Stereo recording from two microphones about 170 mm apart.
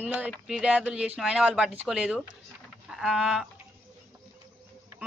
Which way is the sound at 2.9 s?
Centre (ahead or behind).